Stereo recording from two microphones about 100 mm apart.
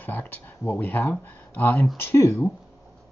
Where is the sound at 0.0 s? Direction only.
20° left (ahead or behind).